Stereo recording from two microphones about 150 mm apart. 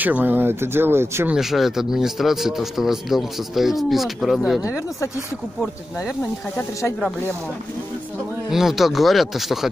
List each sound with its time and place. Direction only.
0.0 s speech: 10° right (ahead or behind)
1.3 s speech: centre (ahead or behind)
4.6 s speech: 20° left (ahead or behind)
8.5 s speech: 5° right (ahead or behind)